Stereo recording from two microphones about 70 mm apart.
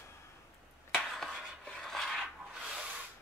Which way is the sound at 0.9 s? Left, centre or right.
Centre.